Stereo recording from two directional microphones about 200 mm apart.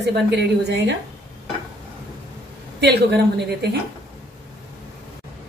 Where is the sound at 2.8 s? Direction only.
55° right (ahead or behind).